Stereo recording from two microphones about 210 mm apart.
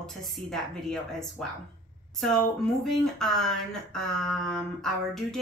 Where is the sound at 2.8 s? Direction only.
Centre (ahead or behind).